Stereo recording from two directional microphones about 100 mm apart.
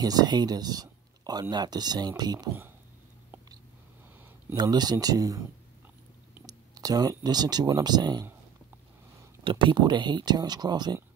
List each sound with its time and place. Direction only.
0.0 s speech: 40° right (ahead or behind)
4.6 s speech: 45° right (ahead or behind)
6.4 s speech: 40° right (ahead or behind)
9.4 s speech: 60° right (ahead or behind)